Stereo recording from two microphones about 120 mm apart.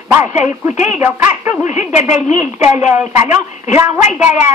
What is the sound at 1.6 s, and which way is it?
Speech, 75° left (ahead or behind).